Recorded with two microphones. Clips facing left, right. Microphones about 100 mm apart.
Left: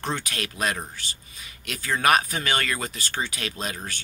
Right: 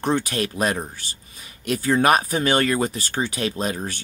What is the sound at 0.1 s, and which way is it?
Speech, 35° right (ahead or behind).